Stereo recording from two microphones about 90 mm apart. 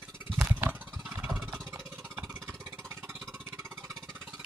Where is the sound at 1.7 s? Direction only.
30° right (ahead or behind).